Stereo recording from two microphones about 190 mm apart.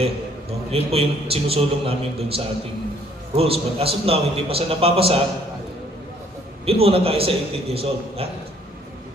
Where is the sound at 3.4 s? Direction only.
30° right (ahead or behind).